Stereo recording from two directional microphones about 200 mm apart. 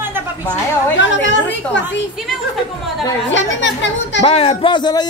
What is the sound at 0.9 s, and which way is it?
Speech, 65° left (ahead or behind).